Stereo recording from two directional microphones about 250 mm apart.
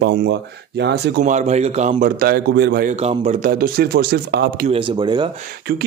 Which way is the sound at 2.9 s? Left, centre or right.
Right.